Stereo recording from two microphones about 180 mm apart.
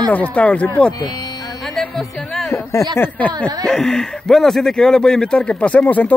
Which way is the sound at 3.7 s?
5° left (ahead or behind).